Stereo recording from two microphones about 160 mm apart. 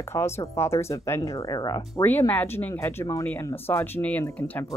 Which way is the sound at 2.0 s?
10° left (ahead or behind).